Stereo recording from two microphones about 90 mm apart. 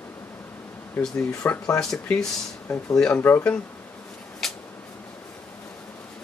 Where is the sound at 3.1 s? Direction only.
25° left (ahead or behind).